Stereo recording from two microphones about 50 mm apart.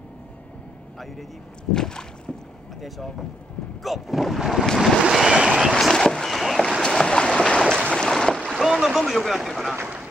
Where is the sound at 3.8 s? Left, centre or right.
Centre.